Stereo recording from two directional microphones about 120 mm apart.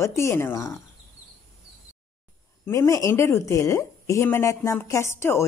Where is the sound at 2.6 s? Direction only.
20° left (ahead or behind).